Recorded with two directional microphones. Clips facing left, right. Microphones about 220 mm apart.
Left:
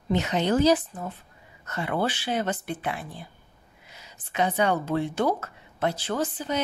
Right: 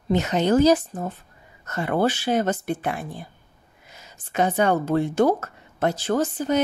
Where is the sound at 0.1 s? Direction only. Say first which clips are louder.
Right 4 dB; 45° right (ahead or behind).